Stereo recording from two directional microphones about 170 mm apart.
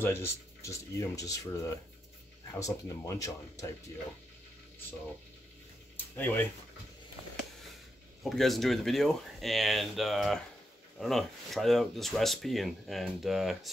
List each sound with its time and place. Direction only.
0.0 s speech: 15° left (ahead or behind)
6.1 s speech: 10° left (ahead or behind)
8.2 s speech: centre (ahead or behind)